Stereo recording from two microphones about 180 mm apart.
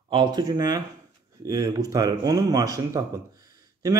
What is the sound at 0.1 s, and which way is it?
Speech, 25° right (ahead or behind).